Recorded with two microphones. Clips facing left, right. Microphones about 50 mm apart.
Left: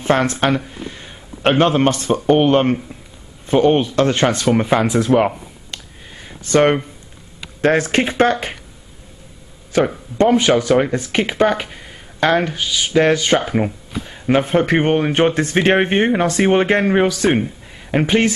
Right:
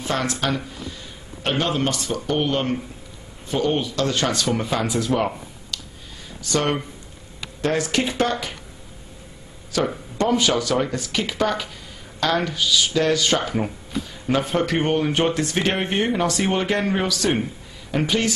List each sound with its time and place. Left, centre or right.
0.0 s a man's voice: left
9.7 s speech: left